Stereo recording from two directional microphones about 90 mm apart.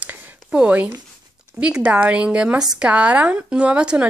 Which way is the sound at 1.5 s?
15° right (ahead or behind).